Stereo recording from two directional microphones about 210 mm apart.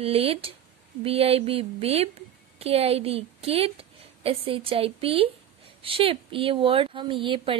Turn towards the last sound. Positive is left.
turn(degrees=-25)  # may be behind; listen again after turning